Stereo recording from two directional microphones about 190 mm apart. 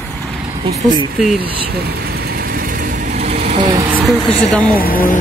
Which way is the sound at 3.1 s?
35° right (ahead or behind).